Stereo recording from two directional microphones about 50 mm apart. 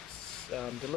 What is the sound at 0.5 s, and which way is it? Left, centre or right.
Speech, centre.